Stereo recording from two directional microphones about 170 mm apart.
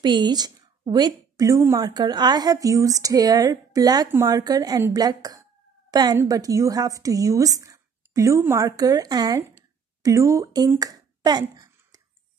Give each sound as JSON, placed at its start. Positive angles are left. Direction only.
{"t": 0.0, "sound": "a woman's voice", "side_deg": -25}